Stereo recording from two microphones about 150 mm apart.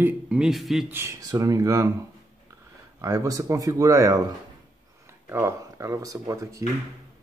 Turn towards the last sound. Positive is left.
turn(degrees=-20)  # may be behind; listen again after turning